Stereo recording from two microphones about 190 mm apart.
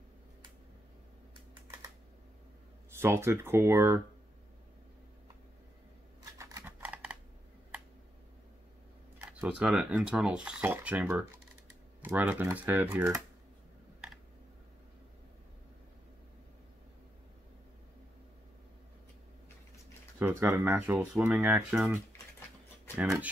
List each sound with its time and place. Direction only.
2.9 s speech: 10° right (ahead or behind)
6.3 s typing: 15° right (ahead or behind)
9.2 s speech: 5° right (ahead or behind)
20.2 s speech: 10° right (ahead or behind)